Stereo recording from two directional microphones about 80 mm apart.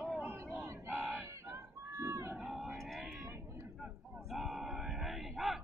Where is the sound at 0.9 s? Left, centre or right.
Centre.